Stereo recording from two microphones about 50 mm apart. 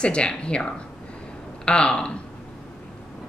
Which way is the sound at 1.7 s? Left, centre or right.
Centre.